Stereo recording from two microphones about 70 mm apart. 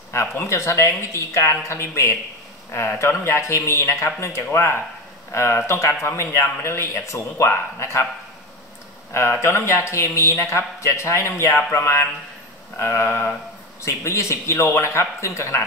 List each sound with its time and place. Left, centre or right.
0.1 s a man's voice: left
9.1 s a man's voice: left